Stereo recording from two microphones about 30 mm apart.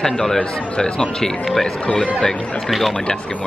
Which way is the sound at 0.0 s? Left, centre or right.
Centre.